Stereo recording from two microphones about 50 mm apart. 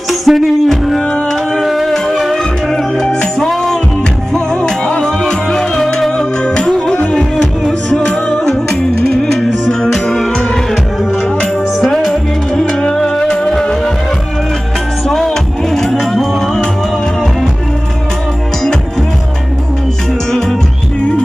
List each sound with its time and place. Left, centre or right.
0.2 s music: centre; by 7.2 s left
7.2 s music: centre
11.8 s music: centre
15.0 s music: centre